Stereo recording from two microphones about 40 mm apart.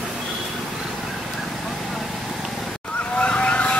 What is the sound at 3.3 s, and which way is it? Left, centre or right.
Vehicle, left.